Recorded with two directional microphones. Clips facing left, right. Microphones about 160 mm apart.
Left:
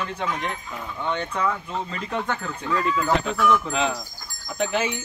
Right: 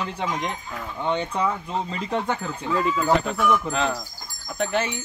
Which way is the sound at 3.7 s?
Centre (ahead or behind).